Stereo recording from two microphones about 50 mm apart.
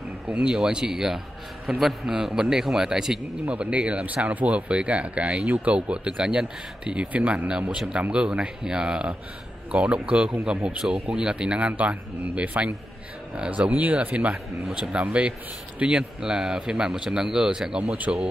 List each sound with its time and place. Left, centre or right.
0.3 s a man's voice: centre
3.4 s speech: right